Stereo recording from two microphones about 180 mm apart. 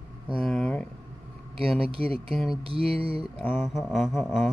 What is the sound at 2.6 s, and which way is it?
Speech, 30° right (ahead or behind).